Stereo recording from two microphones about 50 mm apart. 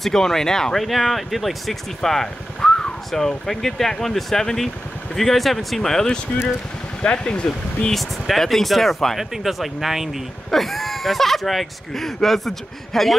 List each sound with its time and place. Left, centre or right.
0.0 s speech: centre
7.9 s speech: centre